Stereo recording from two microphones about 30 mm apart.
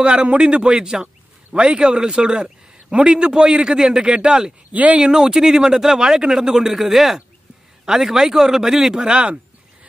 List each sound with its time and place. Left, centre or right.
0.0 s a man's voice: right; by 6.7 s centre
6.7 s speech: centre
8.9 s a man's voice: right